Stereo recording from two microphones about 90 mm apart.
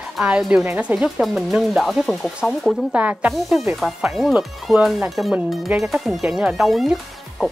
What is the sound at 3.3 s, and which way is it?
Speech, centre (ahead or behind).